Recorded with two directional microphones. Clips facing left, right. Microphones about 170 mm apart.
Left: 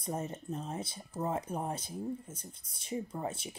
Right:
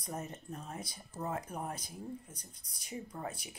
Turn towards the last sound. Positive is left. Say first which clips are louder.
# left 4 dB
turn(degrees=25)  # may be behind; listen again after turning